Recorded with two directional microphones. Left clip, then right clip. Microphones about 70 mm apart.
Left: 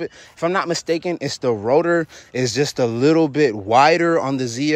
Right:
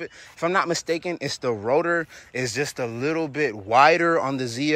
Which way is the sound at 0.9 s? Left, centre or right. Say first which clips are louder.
Left 4 dB; left.